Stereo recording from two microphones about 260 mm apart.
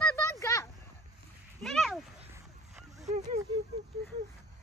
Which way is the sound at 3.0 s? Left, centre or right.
Right.